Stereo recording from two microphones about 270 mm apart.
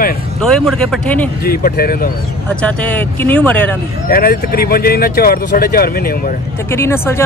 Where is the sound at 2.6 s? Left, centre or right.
Centre.